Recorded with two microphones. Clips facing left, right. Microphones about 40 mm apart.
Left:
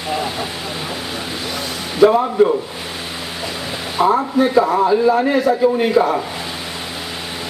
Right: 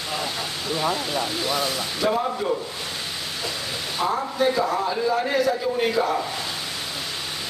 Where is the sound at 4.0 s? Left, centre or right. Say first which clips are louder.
Left 8 dB; left.